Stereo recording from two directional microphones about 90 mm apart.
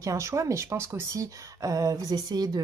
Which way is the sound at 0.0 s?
35° right (ahead or behind).